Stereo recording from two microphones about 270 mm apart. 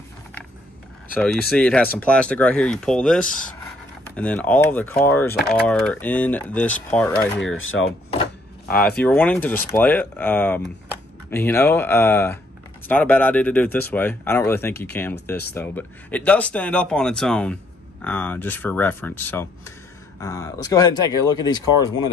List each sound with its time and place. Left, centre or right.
1.5 s speech: centre
7.5 s speech: left
8.6 s speech: left
9.0 s speech: centre